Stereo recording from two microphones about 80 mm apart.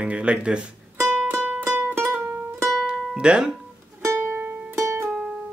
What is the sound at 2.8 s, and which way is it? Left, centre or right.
Music, centre.